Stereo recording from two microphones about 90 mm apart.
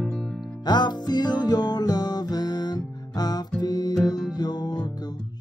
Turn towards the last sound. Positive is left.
turn(degrees=50)  # may be behind; listen again after turning